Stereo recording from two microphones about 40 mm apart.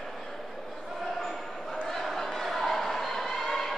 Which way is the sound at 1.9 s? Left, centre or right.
Centre.